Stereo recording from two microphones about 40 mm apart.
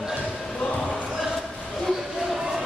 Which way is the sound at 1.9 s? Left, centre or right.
Centre.